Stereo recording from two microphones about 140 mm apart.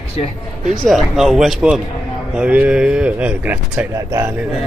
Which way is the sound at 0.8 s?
Centre (ahead or behind).